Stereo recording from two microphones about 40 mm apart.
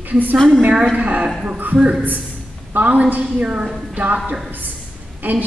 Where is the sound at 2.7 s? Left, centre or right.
Right.